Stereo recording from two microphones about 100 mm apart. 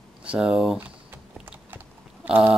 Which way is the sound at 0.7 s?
20° right (ahead or behind).